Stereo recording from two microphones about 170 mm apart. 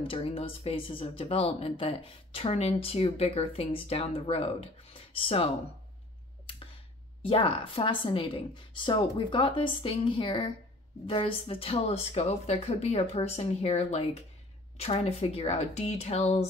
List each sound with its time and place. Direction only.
0.0 s speech: 30° left (ahead or behind)
7.2 s speech: 35° left (ahead or behind)